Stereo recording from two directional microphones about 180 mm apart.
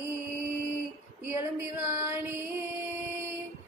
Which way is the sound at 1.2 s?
15° right (ahead or behind).